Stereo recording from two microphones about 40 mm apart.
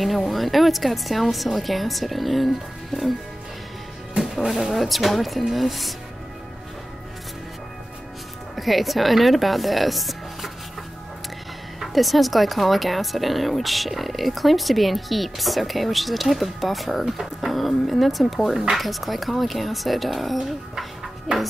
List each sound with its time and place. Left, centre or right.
0.0 s speech: centre
4.5 s speech: centre
8.5 s speech: centre
11.8 s speech: centre
17.0 s speech: centre
17.5 s speech: centre